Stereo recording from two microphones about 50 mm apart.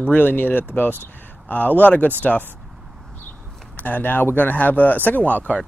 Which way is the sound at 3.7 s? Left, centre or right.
Left.